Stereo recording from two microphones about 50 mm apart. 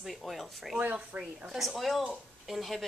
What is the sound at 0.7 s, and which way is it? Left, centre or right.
Speech, right.